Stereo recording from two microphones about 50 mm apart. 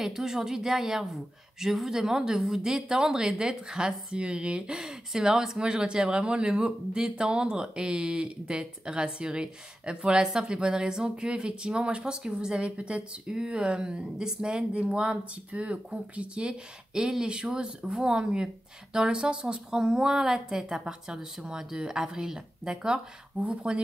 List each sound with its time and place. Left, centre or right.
0.0 s a woman's voice: centre